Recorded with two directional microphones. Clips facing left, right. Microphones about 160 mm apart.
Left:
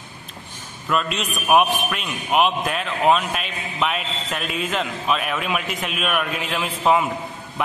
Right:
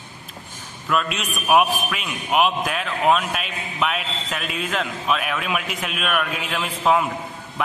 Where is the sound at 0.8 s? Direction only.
Centre (ahead or behind).